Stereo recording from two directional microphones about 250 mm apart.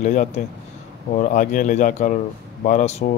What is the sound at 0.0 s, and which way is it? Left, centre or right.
Speech, left.